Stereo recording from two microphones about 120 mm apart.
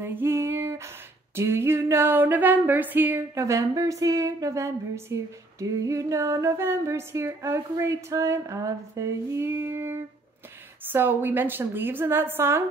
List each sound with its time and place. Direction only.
0.0 s female singing: 20° right (ahead or behind)
1.3 s a sound: 20° right (ahead or behind)
10.8 s a woman's voice: 20° right (ahead or behind)